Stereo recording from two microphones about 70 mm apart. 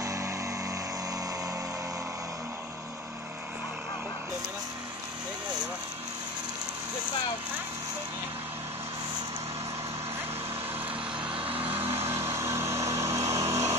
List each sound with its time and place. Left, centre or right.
0.0 s music: right
12.1 s vehicle: right